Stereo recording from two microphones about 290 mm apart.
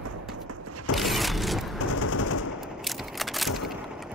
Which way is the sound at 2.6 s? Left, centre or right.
Centre.